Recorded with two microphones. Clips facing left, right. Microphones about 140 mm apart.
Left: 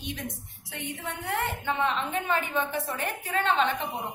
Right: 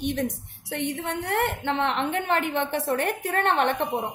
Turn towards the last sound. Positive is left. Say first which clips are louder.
# right 3 dB
turn(degrees=-60)  # may be behind; listen again after turning